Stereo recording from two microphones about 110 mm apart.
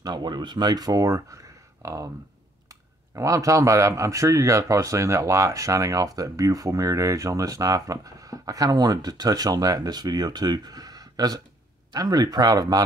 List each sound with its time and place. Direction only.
0.0 s speech: 40° right (ahead or behind)
3.2 s speech: 30° right (ahead or behind)